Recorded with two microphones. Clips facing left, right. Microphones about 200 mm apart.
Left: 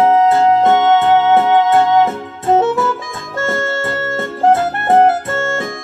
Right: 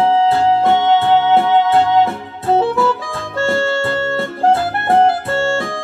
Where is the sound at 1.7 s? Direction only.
20° left (ahead or behind).